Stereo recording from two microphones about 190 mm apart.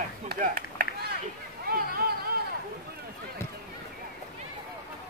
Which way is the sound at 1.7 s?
55° right (ahead or behind).